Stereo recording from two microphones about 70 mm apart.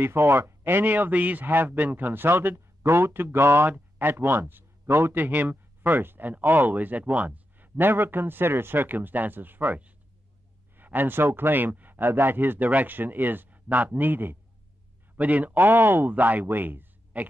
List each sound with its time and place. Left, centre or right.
0.0 s speech: right
5.1 s speech: right